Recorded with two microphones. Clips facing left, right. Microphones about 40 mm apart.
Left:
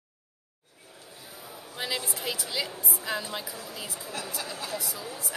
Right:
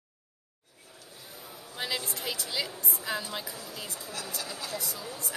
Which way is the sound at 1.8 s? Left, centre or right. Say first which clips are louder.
Left 1 dB; centre.